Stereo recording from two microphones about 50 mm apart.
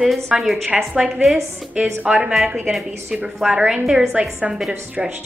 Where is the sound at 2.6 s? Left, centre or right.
Centre.